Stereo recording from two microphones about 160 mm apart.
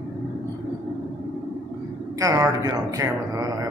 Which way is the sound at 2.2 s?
20° right (ahead or behind).